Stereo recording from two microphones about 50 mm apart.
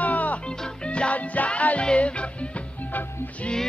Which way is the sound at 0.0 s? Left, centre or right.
Left.